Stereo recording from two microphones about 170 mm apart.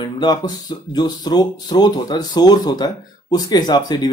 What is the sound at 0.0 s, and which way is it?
Speech, 25° left (ahead or behind).